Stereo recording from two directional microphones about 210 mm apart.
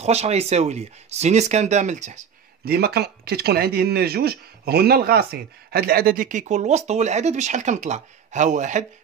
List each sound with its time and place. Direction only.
0.0 s speech: 30° right (ahead or behind)